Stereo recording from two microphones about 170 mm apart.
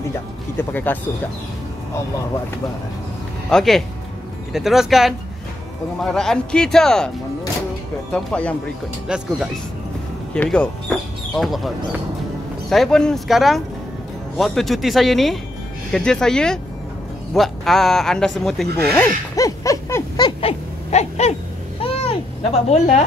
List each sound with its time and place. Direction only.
0.6 s speech: 10° left (ahead or behind)
3.4 s speech: centre (ahead or behind)
8.1 s speech: 5° left (ahead or behind); by 21.4 s 40° left (ahead or behind)
21.8 s a sound: 35° left (ahead or behind)